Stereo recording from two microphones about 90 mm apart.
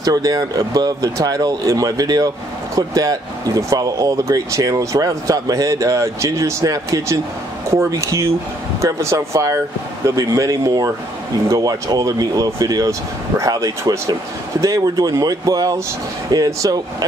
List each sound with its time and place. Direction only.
0.0 s speech: 45° right (ahead or behind)